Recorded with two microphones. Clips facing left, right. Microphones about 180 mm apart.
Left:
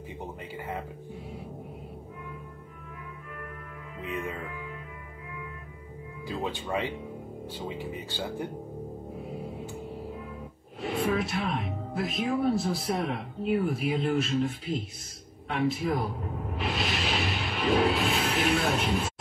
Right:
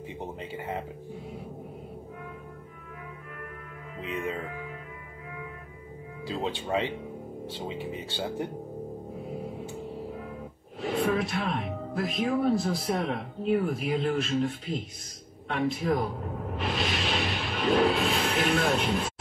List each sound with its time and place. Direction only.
0.4 s speech: 20° right (ahead or behind)
6.2 s speech: 25° right (ahead or behind)
10.8 s speech: centre (ahead or behind)
16.5 s music: centre (ahead or behind)
18.5 s speech: centre (ahead or behind)